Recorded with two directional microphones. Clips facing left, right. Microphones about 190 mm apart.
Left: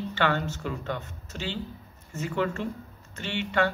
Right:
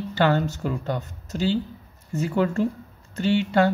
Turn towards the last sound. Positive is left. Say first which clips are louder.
# right 7 dB
turn(degrees=-35)  # may be behind; listen again after turning